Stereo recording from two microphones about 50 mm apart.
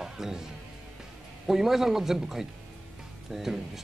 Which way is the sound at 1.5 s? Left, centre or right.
Centre.